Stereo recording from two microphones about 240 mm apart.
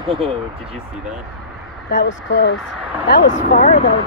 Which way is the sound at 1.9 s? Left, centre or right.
Left.